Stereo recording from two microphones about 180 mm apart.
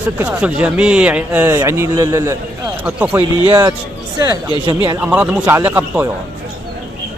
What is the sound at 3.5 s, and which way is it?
Speech, 20° right (ahead or behind).